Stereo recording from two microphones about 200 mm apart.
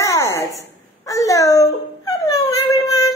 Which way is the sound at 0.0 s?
15° left (ahead or behind).